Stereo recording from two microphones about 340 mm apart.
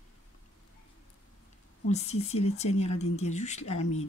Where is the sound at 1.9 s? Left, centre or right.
Centre.